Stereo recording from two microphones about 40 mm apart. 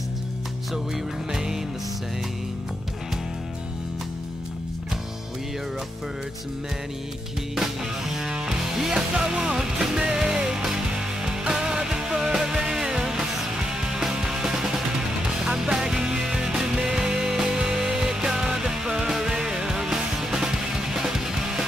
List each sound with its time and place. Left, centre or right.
1.3 s music: centre
7.5 s music: centre
8.9 s music: centre